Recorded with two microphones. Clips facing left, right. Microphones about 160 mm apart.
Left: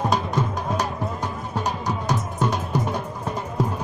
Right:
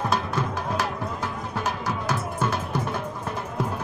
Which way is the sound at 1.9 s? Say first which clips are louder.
Left 2 dB; 15° left (ahead or behind).